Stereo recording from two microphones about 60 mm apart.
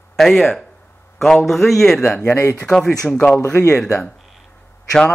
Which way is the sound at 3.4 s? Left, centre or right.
Left.